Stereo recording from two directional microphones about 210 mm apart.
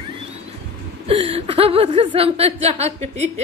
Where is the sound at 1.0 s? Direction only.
30° right (ahead or behind).